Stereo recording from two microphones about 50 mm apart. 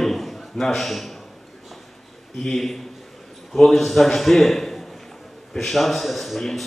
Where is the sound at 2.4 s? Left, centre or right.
Centre.